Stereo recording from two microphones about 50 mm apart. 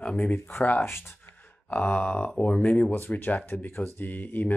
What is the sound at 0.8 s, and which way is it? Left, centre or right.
Speech, left.